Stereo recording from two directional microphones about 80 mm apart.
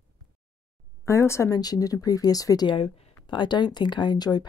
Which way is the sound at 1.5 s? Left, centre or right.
Left.